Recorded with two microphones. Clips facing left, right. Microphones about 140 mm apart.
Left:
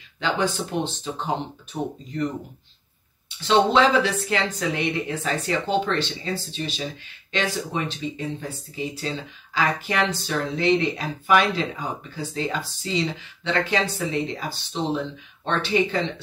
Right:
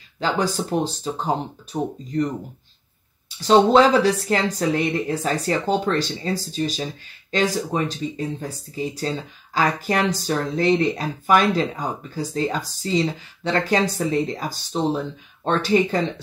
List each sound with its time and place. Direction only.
0.2 s speech: 40° right (ahead or behind)
3.3 s speech: 40° right (ahead or behind)